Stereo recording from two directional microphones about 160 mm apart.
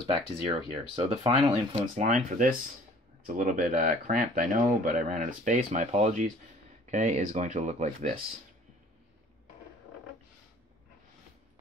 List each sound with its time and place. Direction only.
0.0 s speech: 35° right (ahead or behind)